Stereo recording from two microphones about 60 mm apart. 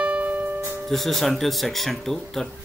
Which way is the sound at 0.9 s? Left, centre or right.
Centre.